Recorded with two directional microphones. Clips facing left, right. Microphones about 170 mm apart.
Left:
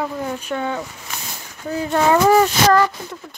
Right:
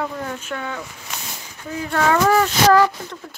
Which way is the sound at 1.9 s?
20° left (ahead or behind).